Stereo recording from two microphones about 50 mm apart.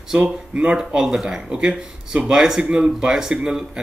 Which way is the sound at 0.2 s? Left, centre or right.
Right.